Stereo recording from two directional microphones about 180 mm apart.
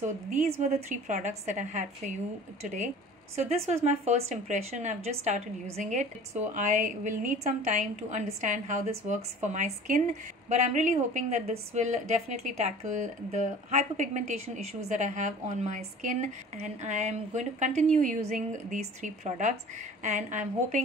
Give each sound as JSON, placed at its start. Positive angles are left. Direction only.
{"t": 0.0, "sound": "a woman's voice", "side_deg": -45}
{"t": 3.3, "sound": "a woman's voice", "side_deg": -35}